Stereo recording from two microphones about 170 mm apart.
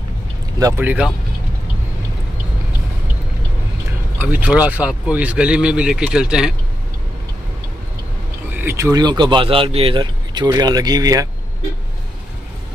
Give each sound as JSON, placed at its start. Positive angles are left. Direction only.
{"t": 0.6, "sound": "speech", "side_deg": -15}
{"t": 4.2, "sound": "speech", "side_deg": -10}
{"t": 8.5, "sound": "speech", "side_deg": -15}